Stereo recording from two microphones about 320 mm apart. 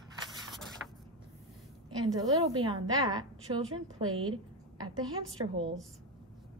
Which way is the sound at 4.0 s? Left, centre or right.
Right.